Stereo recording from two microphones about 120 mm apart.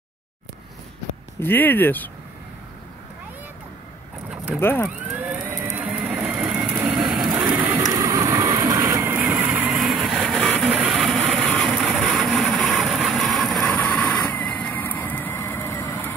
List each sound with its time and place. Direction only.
1.4 s speech: 15° left (ahead or behind)
4.6 s speech: 20° left (ahead or behind)
4.8 s vehicle: 10° right (ahead or behind)
5.8 s printer: 15° right (ahead or behind)
6.2 s vehicle: 10° right (ahead or behind)
7.2 s printer: 15° right (ahead or behind)
7.7 s train: 30° right (ahead or behind)
9.2 s vehicle: 10° right (ahead or behind); by 16.1 s 15° left (ahead or behind)